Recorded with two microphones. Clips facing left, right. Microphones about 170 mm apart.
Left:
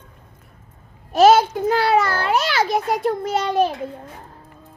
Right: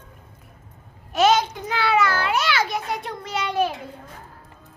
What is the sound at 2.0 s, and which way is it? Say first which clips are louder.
A child's voice: left 2 dB; 30° left (ahead or behind).